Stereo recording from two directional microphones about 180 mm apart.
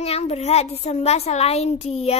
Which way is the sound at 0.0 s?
35° left (ahead or behind).